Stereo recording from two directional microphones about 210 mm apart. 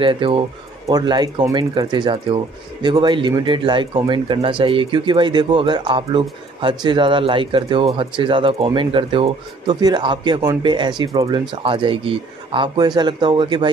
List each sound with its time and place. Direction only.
0.0 s speech: 25° right (ahead or behind)